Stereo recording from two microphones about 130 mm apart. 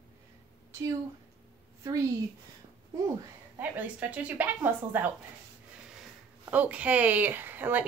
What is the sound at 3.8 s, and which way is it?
A woman's voice, 10° right (ahead or behind).